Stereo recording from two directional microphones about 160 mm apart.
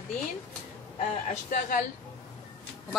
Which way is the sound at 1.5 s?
55° left (ahead or behind).